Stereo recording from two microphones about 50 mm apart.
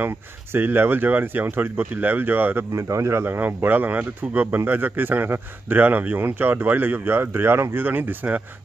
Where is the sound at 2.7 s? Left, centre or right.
Right.